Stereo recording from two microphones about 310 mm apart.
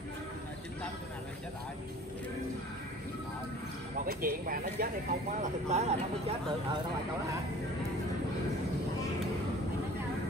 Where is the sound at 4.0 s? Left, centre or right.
Right.